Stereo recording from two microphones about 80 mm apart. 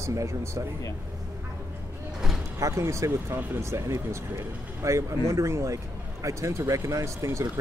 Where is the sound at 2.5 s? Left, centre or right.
Right.